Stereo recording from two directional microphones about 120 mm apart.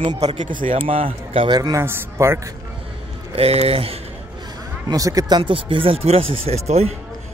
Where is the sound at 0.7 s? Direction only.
50° right (ahead or behind).